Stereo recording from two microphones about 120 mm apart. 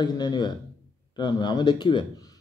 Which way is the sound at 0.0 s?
35° left (ahead or behind).